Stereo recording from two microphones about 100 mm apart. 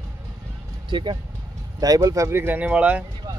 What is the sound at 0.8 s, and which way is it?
Speech, 50° right (ahead or behind).